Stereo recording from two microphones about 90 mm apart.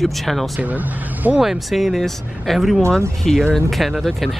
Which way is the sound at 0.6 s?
20° right (ahead or behind).